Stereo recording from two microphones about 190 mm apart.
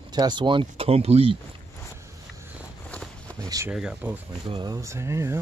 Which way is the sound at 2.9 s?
5° left (ahead or behind).